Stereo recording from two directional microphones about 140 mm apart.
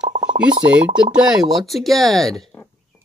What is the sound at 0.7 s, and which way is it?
Speech, 10° right (ahead or behind).